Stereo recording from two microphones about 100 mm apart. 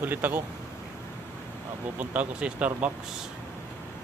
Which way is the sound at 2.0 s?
15° right (ahead or behind).